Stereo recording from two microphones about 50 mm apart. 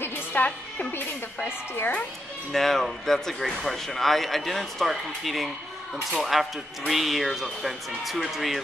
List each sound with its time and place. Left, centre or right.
0.3 s speech: left
2.5 s speech: centre